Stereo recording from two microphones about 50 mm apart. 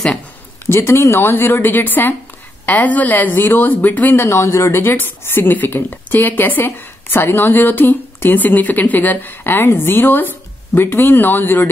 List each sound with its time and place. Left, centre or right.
0.7 s a woman's voice: left
4.3 s speech: left
4.9 s a woman's voice: left